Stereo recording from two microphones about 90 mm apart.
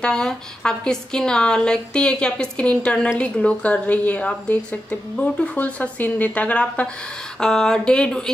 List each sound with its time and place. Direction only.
0.0 s a woman's voice: 5° left (ahead or behind)